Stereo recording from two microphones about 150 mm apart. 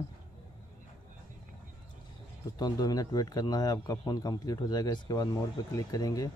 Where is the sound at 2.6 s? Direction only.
25° left (ahead or behind).